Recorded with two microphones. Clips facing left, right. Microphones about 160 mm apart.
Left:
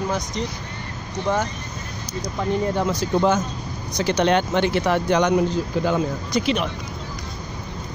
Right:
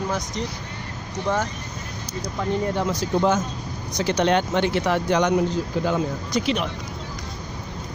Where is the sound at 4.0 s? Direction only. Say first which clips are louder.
Left 1 dB; 70° left (ahead or behind).